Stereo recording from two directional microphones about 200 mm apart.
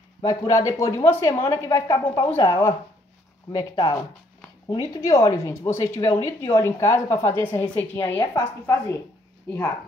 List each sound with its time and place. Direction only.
0.2 s speech: 15° left (ahead or behind)